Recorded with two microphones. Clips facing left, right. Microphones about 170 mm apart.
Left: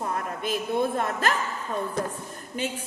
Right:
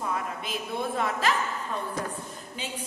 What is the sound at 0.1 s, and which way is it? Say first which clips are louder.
A woman's voice: left 3 dB; 50° left (ahead or behind).